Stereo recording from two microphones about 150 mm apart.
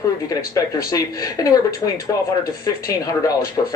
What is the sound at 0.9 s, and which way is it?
Speech, 25° left (ahead or behind).